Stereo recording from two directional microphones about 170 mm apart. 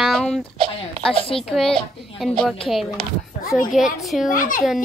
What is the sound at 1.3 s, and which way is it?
A woman's voice, 5° left (ahead or behind).